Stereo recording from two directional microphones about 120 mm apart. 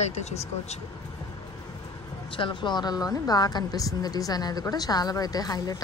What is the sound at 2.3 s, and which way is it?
A woman's voice, 40° left (ahead or behind).